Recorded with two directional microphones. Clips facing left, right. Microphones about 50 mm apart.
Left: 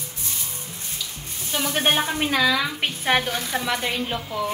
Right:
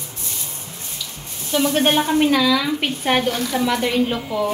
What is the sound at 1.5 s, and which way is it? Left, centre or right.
Speech, centre.